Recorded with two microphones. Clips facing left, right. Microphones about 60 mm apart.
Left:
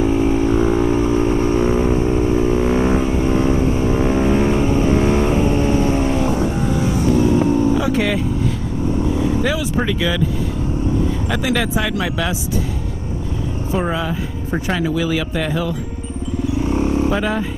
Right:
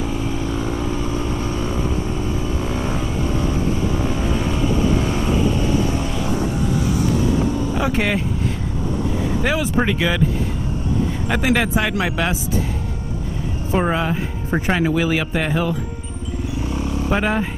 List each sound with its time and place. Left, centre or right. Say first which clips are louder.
0.0 s vehicle: left 8 dB; left
7.7 s vehicle: left 2 dB; right
9.8 s speech: even; right
11.2 s speech: right 1 dB; right
13.8 s speech: right 1 dB; right
16.7 s vehicle: left 8 dB; left
17.1 s speech: even; right